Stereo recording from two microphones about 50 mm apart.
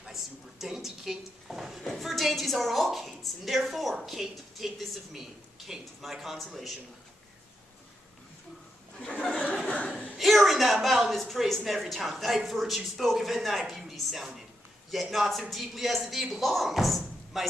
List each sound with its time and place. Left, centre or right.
0.0 s a sound: centre
1.9 s a woman's voice: centre
9.3 s speech: left
10.1 s a woman's voice: centre